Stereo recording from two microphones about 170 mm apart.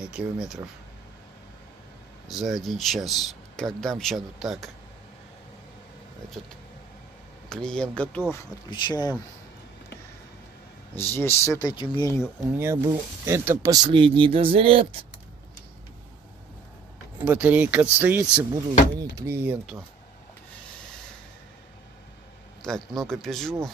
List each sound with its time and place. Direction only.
0.0 s speech: 5° right (ahead or behind)
2.2 s speech: centre (ahead or behind)
7.4 s speech: 5° left (ahead or behind)
8.6 s speech: 25° left (ahead or behind)
11.0 s speech: 15° left (ahead or behind)
12.5 s speech: 15° right (ahead or behind)
13.8 s speech: 30° right (ahead or behind)
17.2 s speech: 10° right (ahead or behind)
22.6 s speech: 5° left (ahead or behind)